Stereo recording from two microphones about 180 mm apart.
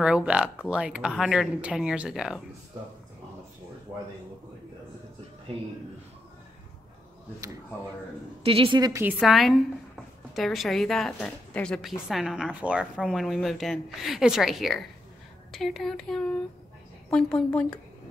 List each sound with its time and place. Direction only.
0.0 s a woman's voice: 5° right (ahead or behind)
8.5 s a woman's voice: 25° right (ahead or behind)
9.0 s a woman's voice: centre (ahead or behind)